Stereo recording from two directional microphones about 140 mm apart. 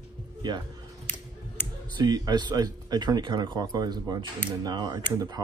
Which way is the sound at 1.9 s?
30° right (ahead or behind).